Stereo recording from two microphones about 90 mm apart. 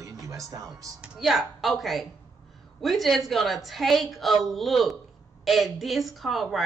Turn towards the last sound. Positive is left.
turn(degrees=0)  # may be behind; listen again after turning